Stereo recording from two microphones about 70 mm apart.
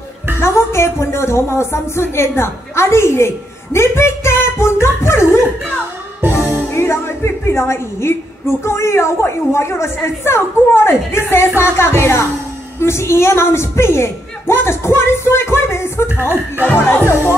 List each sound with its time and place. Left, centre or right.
0.4 s a woman's voice: left
6.5 s a woman's voice: left